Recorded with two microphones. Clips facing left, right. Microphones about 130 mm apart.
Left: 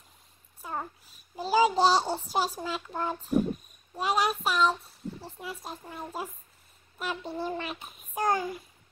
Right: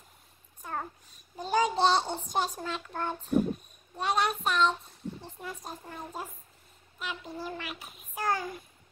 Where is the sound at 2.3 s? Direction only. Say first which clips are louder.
Even; 5° left (ahead or behind).